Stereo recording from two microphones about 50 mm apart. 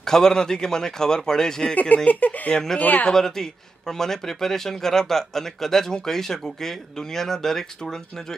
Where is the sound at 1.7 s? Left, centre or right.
Left.